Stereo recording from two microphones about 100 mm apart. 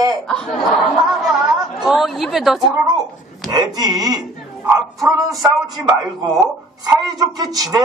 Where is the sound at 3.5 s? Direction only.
40° right (ahead or behind).